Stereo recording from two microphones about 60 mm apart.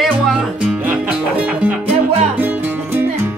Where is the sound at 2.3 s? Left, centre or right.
Right.